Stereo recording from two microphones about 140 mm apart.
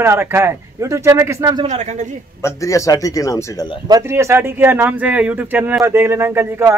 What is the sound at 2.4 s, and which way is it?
Speech, 20° left (ahead or behind).